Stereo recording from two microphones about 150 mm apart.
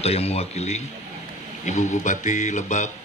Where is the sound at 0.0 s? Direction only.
45° left (ahead or behind).